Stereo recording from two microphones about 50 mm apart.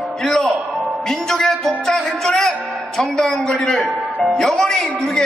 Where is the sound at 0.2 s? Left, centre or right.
Centre.